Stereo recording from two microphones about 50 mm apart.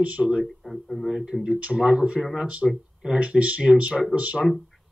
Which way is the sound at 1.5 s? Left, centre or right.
Centre.